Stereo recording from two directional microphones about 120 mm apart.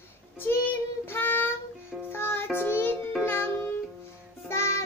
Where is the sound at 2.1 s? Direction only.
20° left (ahead or behind).